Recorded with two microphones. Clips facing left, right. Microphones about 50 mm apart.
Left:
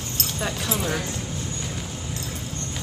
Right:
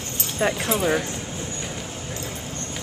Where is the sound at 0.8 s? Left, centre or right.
Centre.